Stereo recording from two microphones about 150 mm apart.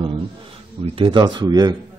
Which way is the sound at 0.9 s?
35° right (ahead or behind).